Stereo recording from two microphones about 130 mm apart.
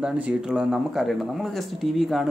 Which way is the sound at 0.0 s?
5° right (ahead or behind).